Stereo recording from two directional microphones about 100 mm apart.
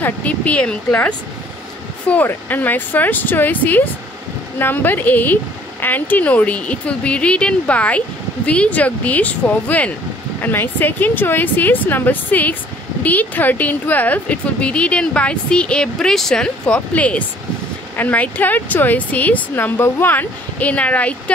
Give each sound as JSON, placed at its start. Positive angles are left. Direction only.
{"t": 0.0, "sound": "speech", "side_deg": 15}